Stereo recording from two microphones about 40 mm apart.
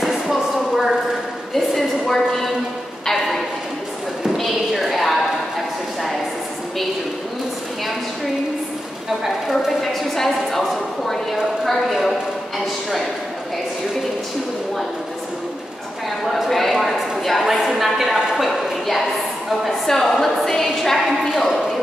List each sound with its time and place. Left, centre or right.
0.0 s a sound: centre
1.5 s a sound: centre
9.2 s a woman's voice: centre
9.8 s a woman's voice: centre
11.9 s speech: centre
16.4 s a woman's voice: centre
19.9 s a woman's voice: centre